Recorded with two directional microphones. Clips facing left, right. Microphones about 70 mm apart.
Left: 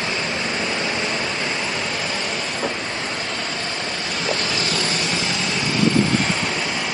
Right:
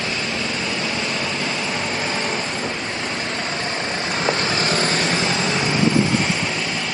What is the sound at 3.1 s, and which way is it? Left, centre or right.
Vehicle, right.